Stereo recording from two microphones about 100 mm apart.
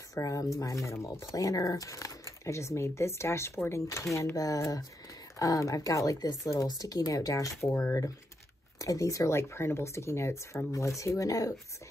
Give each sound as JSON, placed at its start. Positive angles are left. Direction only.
{"t": 0.1, "sound": "speech", "side_deg": 35}